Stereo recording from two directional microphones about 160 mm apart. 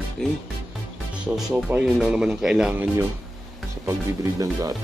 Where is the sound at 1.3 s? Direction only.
10° right (ahead or behind).